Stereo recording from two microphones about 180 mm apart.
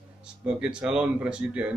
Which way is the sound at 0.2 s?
5° right (ahead or behind).